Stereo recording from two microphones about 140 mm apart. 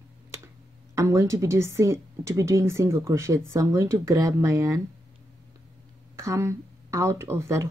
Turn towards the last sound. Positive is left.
turn(degrees=-20)  # may be behind; listen again after turning